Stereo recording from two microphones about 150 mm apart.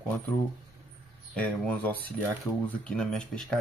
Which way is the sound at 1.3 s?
10° left (ahead or behind).